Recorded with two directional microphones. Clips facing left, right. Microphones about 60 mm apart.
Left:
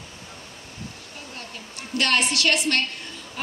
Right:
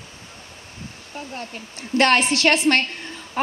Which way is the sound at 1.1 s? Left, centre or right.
Right.